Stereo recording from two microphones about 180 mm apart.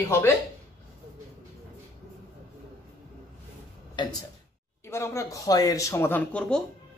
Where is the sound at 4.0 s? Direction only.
25° left (ahead or behind).